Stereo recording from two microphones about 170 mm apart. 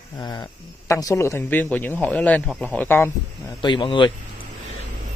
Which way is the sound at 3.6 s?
30° left (ahead or behind).